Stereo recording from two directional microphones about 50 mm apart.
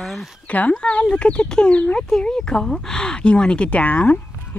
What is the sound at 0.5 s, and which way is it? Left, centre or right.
Speech, left.